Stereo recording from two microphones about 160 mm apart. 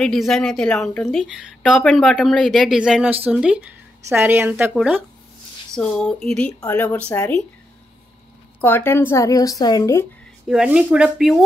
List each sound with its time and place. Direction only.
0.0 s a woman's voice: centre (ahead or behind)
5.8 s speech: 5° left (ahead or behind)
8.5 s a woman's voice: 10° left (ahead or behind)
10.5 s speech: 5° right (ahead or behind)